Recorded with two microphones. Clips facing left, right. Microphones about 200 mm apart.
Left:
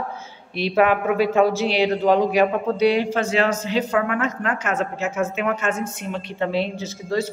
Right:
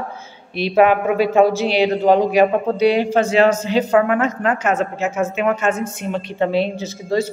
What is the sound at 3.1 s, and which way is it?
A woman's voice, 25° right (ahead or behind).